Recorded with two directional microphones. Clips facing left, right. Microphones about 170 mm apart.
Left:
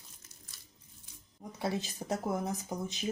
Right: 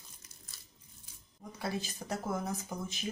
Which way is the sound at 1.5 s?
25° left (ahead or behind).